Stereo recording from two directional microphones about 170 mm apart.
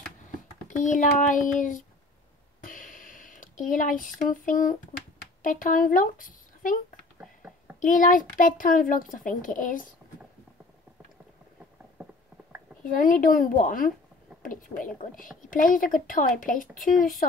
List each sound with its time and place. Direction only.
0.7 s a woman's voice: 50° left (ahead or behind)
2.6 s a sound: 50° left (ahead or behind)
5.4 s speech: 50° left (ahead or behind)
7.2 s a sound: 10° right (ahead or behind)
7.8 s a woman's voice: 50° left (ahead or behind)
12.8 s a woman's voice: 50° left (ahead or behind)